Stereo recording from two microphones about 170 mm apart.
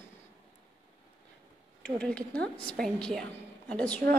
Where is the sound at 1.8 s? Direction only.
5° left (ahead or behind).